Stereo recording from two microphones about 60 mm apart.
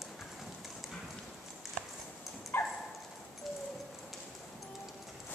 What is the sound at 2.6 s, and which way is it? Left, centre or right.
Dog, left.